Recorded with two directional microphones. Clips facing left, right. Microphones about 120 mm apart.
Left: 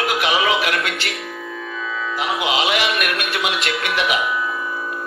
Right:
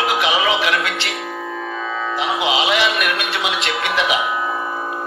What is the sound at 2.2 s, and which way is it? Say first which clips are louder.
Speech: right 1 dB; 45° left (ahead or behind).